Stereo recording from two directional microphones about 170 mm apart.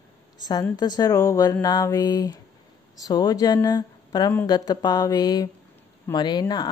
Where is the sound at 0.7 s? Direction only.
25° left (ahead or behind).